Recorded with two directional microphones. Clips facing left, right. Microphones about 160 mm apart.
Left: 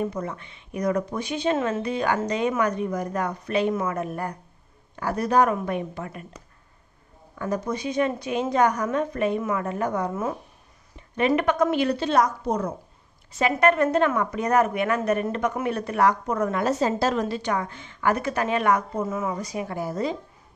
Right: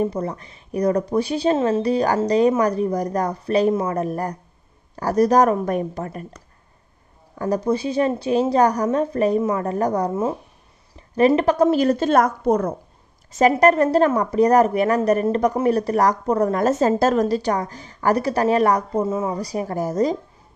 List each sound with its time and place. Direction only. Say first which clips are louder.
0.0 s speech: right 5 dB; 35° right (ahead or behind)
7.3 s speech: right 6 dB; 35° right (ahead or behind); by 12.7 s 55° right (ahead or behind)
13.3 s speech: right 6 dB; 40° right (ahead or behind)